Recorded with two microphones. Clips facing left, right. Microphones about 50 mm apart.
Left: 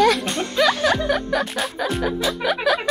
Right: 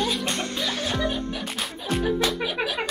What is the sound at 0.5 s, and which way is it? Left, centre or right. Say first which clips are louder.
Music: left 9 dB; left.